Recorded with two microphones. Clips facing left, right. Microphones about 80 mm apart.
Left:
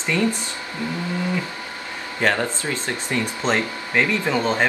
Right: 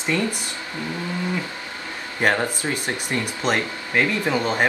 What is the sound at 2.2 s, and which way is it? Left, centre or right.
Speech, centre.